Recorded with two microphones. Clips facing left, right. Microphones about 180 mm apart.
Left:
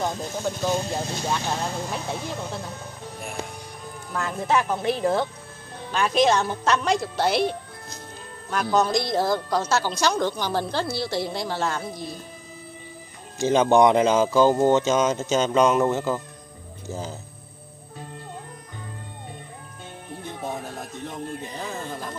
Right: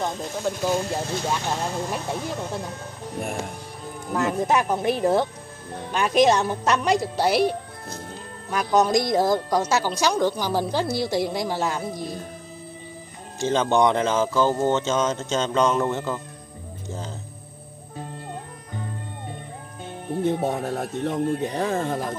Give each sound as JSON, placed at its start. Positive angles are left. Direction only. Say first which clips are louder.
{"t": 0.0, "sound": "speech", "louder": "even", "side_deg": 0}
{"t": 3.2, "sound": "music", "louder": "right 6 dB", "side_deg": -45}
{"t": 4.1, "sound": "speech", "louder": "right 3 dB", "side_deg": -20}
{"t": 13.4, "sound": "speech", "louder": "left 3 dB", "side_deg": 10}
{"t": 20.4, "sound": "speech", "louder": "right 7 dB", "side_deg": -65}